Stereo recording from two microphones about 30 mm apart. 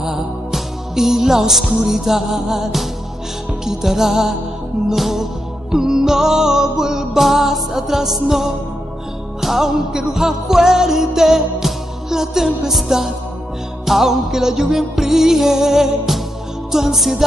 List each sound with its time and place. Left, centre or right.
0.0 s music: centre
7.2 s music: centre